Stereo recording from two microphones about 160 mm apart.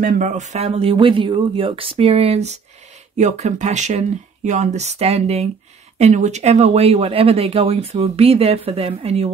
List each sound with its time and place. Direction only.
0.0 s speech: 50° right (ahead or behind)